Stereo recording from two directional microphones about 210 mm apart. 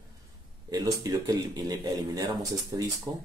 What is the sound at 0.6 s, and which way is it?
Speech, 20° right (ahead or behind).